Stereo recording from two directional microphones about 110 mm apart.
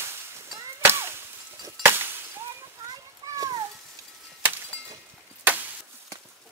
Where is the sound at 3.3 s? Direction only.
35° right (ahead or behind).